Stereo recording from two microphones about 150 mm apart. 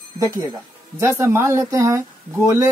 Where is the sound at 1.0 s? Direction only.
20° right (ahead or behind).